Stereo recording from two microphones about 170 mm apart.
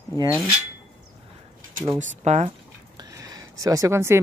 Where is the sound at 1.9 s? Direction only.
45° right (ahead or behind).